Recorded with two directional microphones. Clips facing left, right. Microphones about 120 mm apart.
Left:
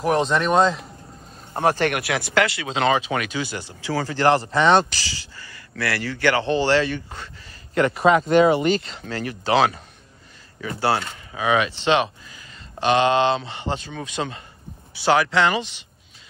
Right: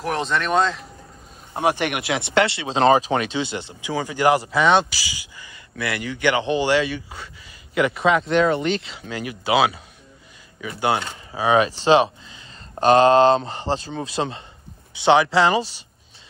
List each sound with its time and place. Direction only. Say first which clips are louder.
0.0 s speech: left 4 dB; centre (ahead or behind)
1.5 s speech: left 1 dB; 15° right (ahead or behind)
10.8 s speech: even; 20° right (ahead or behind)
11.3 s speech: right 3 dB; 35° right (ahead or behind)